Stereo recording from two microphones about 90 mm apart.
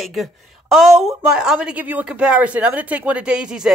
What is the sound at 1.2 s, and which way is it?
A woman's voice, 5° right (ahead or behind).